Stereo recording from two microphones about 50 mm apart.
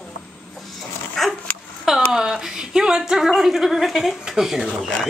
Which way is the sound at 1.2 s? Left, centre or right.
Centre.